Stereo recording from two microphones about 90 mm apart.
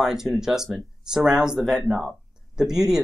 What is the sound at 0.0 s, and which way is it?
Speech, 5° right (ahead or behind).